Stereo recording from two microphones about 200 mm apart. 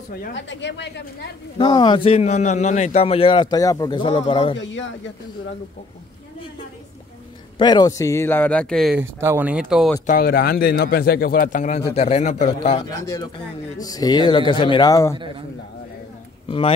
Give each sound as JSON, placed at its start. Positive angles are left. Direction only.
{"t": 0.3, "sound": "speech", "side_deg": 65}
{"t": 1.6, "sound": "speech", "side_deg": 20}
{"t": 4.6, "sound": "a man's voice", "side_deg": 70}
{"t": 7.5, "sound": "speech", "side_deg": 20}
{"t": 9.2, "sound": "speech", "side_deg": -10}
{"t": 10.0, "sound": "a man's voice", "side_deg": 45}
{"t": 12.9, "sound": "speech", "side_deg": 15}
{"t": 16.4, "sound": "speech", "side_deg": 30}